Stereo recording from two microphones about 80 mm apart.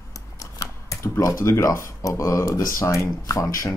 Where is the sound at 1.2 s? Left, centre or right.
Left.